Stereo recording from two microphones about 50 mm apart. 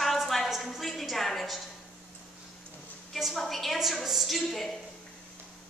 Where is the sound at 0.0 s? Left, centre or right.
Centre.